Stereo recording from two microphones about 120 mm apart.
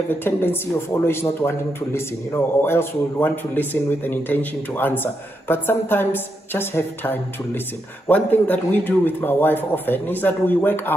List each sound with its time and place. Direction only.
0.1 s speech: 15° left (ahead or behind)